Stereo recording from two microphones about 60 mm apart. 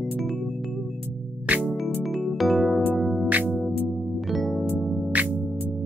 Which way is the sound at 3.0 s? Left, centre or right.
Centre.